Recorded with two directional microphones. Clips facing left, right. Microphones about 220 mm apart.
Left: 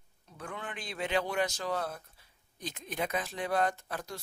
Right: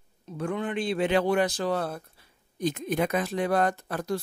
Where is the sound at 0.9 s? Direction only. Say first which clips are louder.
Right 7 dB; 65° right (ahead or behind).